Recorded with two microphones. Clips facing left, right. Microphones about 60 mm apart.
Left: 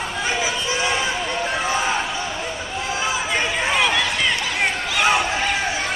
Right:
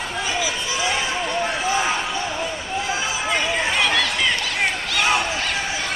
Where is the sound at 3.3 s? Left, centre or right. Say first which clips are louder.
Right 1 dB; centre.